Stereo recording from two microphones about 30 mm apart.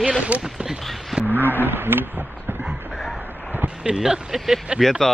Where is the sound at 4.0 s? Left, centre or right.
Right.